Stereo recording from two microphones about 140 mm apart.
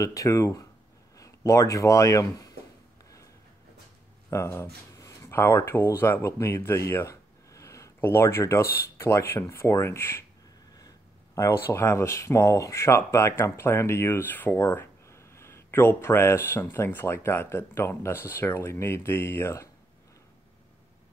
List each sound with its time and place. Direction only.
0.0 s speech: 25° left (ahead or behind)
4.3 s speech: 20° left (ahead or behind)
11.3 s speech: 20° left (ahead or behind)